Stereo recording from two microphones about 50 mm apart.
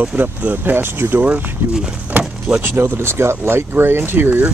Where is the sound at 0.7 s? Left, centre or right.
Right.